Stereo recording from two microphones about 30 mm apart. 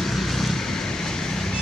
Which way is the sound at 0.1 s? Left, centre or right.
Centre.